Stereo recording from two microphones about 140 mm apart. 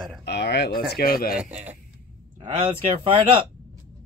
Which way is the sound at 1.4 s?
10° right (ahead or behind).